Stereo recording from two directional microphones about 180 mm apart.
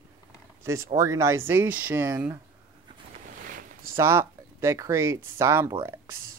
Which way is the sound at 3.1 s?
50° right (ahead or behind).